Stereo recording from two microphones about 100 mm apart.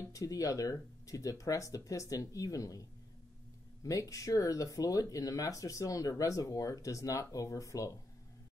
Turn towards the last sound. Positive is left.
turn(degrees=30)  # may be behind; listen again after turning